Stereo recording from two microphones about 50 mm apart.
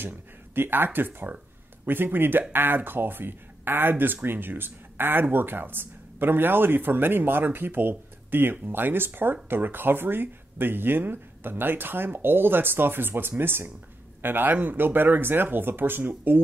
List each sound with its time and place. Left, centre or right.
0.6 s speech: right